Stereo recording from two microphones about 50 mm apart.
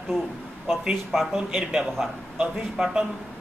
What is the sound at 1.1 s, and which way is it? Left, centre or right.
A man's voice, centre.